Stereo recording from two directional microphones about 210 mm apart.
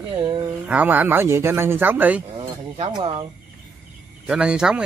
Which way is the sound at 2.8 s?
25° right (ahead or behind).